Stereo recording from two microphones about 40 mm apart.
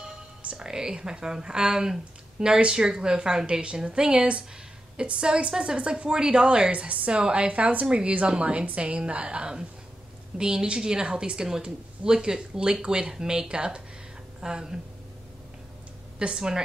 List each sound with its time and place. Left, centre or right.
0.6 s a woman's voice: centre
16.2 s a woman's voice: right